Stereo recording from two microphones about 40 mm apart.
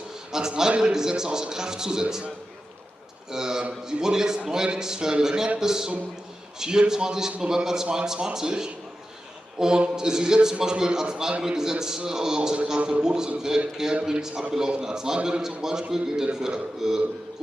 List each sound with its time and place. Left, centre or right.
0.3 s a man's voice: centre
3.3 s a man's voice: centre